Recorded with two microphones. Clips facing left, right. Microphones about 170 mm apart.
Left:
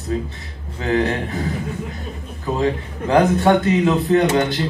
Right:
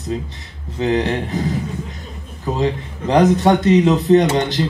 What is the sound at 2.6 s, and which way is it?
A man's voice, 20° right (ahead or behind).